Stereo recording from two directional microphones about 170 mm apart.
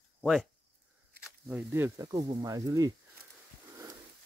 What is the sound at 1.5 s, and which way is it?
Speech, 15° right (ahead or behind).